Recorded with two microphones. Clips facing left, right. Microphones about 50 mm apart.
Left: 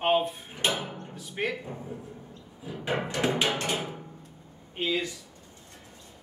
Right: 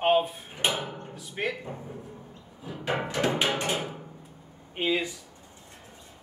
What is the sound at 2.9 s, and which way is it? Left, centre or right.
Music, centre.